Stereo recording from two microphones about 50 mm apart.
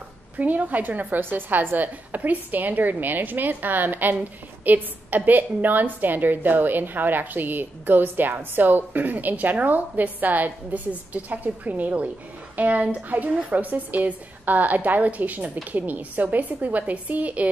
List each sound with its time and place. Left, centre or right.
0.4 s a woman's voice: right